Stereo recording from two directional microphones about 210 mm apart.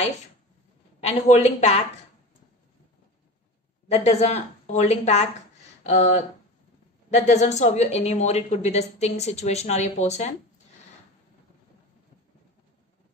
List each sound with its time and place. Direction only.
1.0 s a woman's voice: 30° left (ahead or behind)
3.9 s a woman's voice: 30° left (ahead or behind)